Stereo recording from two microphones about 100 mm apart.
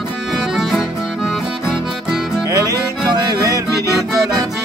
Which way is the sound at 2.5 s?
35° right (ahead or behind).